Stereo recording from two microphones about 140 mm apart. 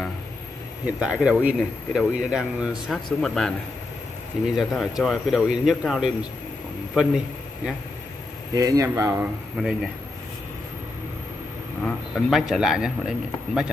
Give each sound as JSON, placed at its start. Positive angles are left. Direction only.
{"t": 0.8, "sound": "a man's voice", "side_deg": -10}
{"t": 8.5, "sound": "speech", "side_deg": -25}
{"t": 9.2, "sound": "speech", "side_deg": -5}
{"t": 11.8, "sound": "speech", "side_deg": 0}